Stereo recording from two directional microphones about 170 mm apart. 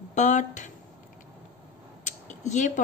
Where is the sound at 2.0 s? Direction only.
45° left (ahead or behind).